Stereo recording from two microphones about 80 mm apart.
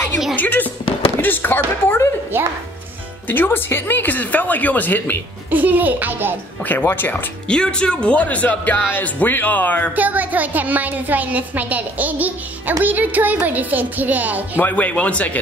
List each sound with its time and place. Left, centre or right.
0.4 s speech: left
2.3 s a woman's voice: right
3.3 s speech: left
5.5 s a woman's voice: right
6.6 s speech: left
7.4 s speech: centre
9.9 s a woman's voice: right
14.6 s speech: left